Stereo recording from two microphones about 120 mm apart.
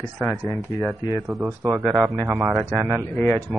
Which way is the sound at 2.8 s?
20° right (ahead or behind).